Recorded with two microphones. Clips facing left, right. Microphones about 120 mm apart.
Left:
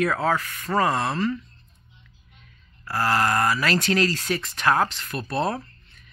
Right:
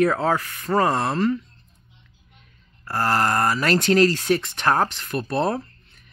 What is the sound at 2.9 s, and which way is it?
Speech, 30° right (ahead or behind).